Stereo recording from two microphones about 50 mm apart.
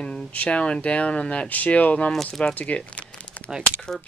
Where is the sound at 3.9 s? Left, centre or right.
Centre.